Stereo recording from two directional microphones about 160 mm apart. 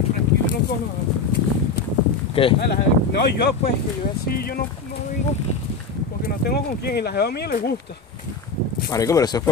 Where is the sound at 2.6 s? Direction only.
90° left.